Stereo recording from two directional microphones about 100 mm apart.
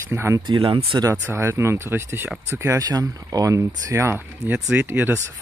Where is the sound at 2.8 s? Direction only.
40° right (ahead or behind).